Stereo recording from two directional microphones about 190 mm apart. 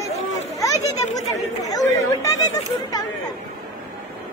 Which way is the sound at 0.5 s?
15° left (ahead or behind).